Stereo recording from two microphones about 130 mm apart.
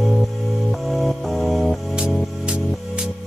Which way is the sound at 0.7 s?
Centre (ahead or behind).